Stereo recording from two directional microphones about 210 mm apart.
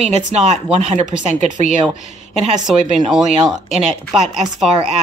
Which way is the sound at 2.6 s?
5° right (ahead or behind).